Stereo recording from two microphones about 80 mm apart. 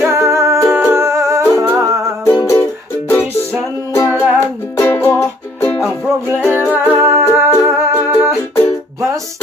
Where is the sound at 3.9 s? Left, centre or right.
Left.